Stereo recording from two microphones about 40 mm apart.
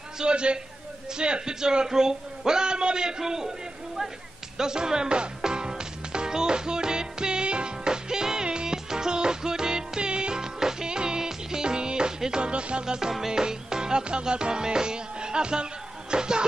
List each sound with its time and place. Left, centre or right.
0.2 s a man's voice: right
4.6 s music: centre